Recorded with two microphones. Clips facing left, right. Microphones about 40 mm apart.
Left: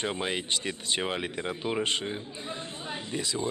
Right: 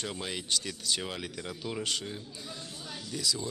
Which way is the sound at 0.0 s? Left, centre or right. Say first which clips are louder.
Left 6 dB; left.